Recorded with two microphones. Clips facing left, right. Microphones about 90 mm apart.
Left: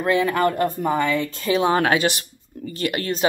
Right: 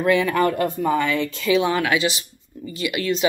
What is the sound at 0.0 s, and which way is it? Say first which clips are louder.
Speech: right 1 dB; 30° left (ahead or behind).